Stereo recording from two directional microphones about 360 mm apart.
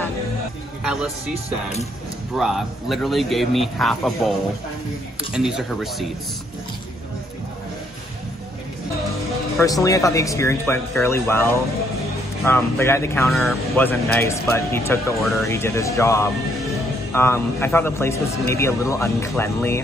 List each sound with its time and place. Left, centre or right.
2.3 s speech: centre
5.3 s speech: centre
9.6 s speech: centre